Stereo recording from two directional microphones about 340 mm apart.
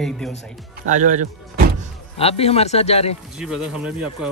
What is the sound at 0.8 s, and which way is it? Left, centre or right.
Speech, right.